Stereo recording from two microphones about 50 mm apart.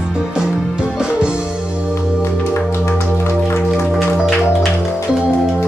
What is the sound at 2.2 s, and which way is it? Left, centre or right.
Music, left.